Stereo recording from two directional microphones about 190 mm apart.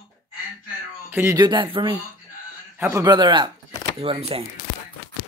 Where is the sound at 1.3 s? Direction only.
25° right (ahead or behind).